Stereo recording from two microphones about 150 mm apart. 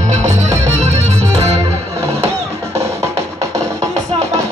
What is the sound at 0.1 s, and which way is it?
Music, 50° right (ahead or behind).